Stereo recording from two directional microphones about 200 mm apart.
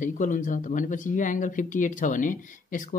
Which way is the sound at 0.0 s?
40° left (ahead or behind).